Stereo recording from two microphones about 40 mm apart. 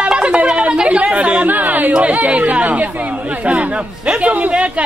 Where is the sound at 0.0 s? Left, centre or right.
Right.